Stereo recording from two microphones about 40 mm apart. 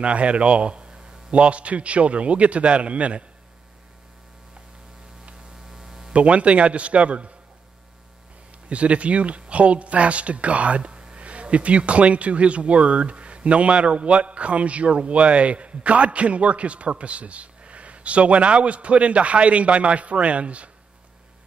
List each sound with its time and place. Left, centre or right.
0.0 s speech: right
5.7 s hum: centre
6.1 s speech: right
8.6 s speech: right